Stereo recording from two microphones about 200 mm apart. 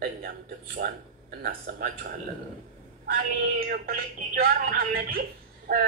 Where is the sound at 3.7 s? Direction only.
50° right (ahead or behind).